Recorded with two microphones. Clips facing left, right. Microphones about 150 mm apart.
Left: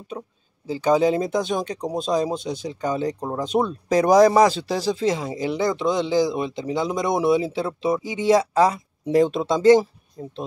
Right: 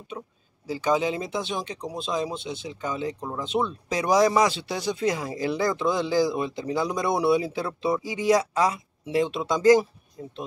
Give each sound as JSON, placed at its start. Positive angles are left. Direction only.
{"t": 0.1, "sound": "speech", "side_deg": 40}